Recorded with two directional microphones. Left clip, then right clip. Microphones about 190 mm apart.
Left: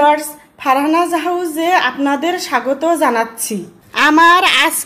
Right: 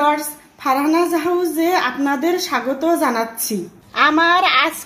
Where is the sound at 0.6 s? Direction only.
25° left (ahead or behind).